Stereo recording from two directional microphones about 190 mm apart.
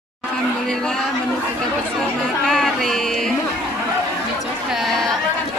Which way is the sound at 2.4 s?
Centre (ahead or behind).